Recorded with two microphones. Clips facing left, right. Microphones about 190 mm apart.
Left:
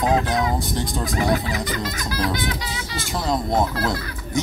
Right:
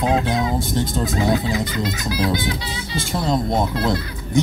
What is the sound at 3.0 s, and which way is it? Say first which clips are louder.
Speech: right 3 dB; 25° right (ahead or behind).